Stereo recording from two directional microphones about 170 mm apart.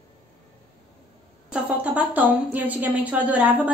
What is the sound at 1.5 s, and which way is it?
A woman's voice, 10° right (ahead or behind).